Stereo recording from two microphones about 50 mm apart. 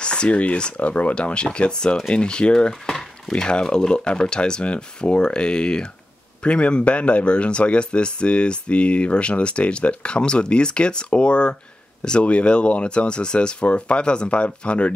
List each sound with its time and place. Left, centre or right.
0.0 s speech: centre